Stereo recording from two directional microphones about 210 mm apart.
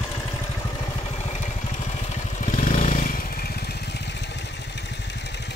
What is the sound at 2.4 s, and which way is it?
Motorcycle, 40° left (ahead or behind).